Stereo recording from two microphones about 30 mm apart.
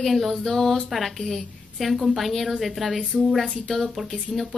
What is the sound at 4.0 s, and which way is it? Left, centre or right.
Speech, centre.